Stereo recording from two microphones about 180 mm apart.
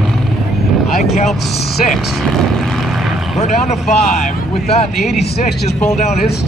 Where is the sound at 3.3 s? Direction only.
40° left (ahead or behind).